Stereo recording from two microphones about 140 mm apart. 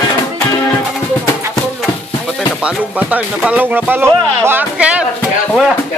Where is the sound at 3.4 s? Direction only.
10° right (ahead or behind).